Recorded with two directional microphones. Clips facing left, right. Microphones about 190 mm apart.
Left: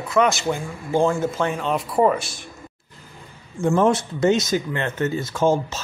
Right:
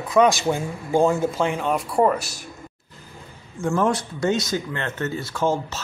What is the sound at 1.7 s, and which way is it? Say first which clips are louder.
Speech: left 2 dB; 5° left (ahead or behind).